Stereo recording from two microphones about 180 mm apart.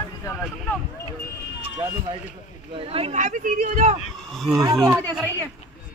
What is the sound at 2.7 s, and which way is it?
Speech, 30° right (ahead or behind).